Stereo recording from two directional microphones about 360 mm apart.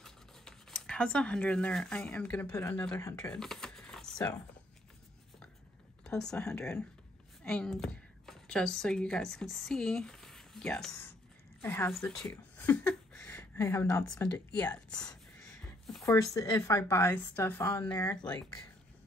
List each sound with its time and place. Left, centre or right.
0.0 s speech: centre
6.0 s speech: centre